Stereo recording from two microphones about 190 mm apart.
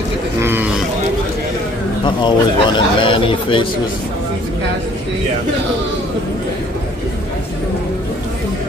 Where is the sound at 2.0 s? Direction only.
25° left (ahead or behind).